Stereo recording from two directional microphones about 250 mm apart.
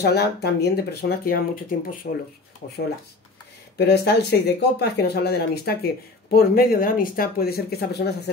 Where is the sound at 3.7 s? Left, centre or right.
Left.